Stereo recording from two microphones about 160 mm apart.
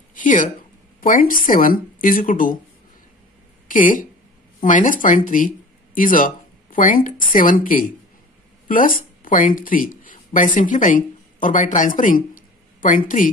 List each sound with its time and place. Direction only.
0.1 s a woman's voice: 55° left (ahead or behind)
3.6 s speech: 55° left (ahead or behind)